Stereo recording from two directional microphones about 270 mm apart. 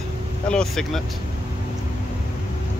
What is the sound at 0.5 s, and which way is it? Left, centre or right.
Speech, centre.